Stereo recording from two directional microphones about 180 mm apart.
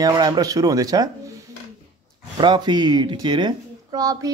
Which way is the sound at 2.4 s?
25° right (ahead or behind).